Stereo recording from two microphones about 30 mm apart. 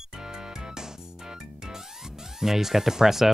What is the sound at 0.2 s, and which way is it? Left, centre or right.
Music, right.